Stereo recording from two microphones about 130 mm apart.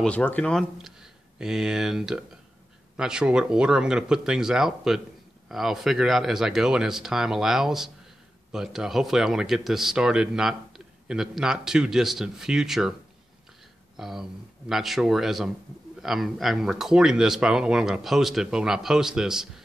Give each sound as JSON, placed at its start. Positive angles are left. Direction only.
{"t": 0.0, "sound": "speech", "side_deg": 10}
{"t": 13.9, "sound": "speech", "side_deg": -5}